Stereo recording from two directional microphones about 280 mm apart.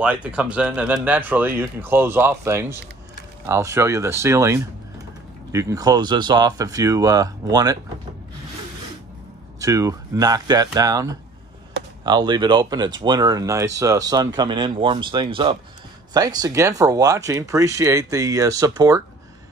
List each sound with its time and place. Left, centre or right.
0.0 s speech: centre
9.6 s speech: centre